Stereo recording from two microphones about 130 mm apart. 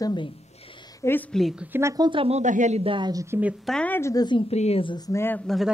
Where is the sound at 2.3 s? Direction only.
70° right (ahead or behind).